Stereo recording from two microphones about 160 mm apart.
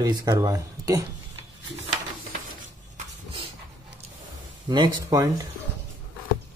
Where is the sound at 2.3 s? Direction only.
60° right (ahead or behind).